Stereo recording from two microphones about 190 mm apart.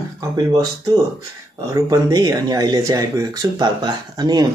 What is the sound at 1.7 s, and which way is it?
Speech, 15° right (ahead or behind).